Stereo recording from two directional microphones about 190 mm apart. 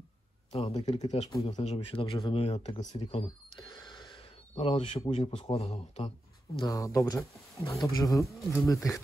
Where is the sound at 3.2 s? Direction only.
25° left (ahead or behind).